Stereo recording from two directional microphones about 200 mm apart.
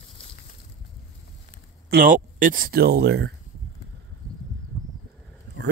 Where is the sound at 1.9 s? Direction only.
40° right (ahead or behind).